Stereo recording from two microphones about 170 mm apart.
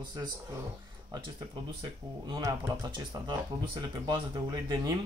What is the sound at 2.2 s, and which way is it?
Speech, 25° right (ahead or behind).